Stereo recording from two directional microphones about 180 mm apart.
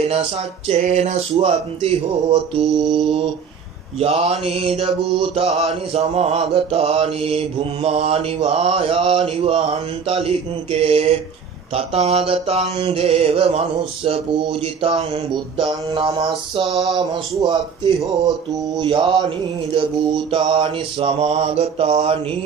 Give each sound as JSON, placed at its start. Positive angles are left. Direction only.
{"t": 0.0, "sound": "mantra", "side_deg": -35}
{"t": 4.0, "sound": "mantra", "side_deg": -35}
{"t": 16.6, "sound": "a sound", "side_deg": 0}
{"t": 17.0, "sound": "speech", "side_deg": -25}
{"t": 18.8, "sound": "mantra", "side_deg": -30}